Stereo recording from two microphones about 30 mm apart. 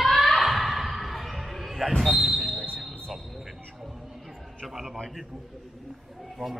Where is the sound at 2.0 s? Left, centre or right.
Centre.